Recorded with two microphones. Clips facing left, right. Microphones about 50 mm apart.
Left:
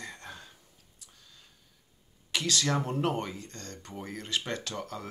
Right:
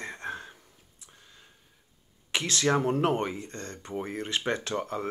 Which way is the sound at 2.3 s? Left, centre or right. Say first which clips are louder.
Right 3 dB; right.